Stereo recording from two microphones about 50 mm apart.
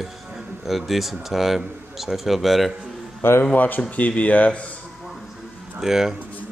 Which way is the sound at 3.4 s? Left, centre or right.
Left.